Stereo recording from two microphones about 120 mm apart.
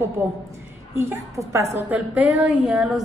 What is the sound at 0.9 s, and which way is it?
Speech, 20° right (ahead or behind).